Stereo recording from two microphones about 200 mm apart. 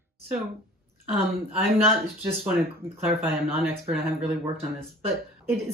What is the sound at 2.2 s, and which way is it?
Speech, 10° right (ahead or behind).